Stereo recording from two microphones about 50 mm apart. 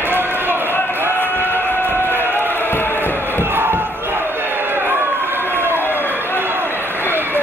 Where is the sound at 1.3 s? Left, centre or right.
Left.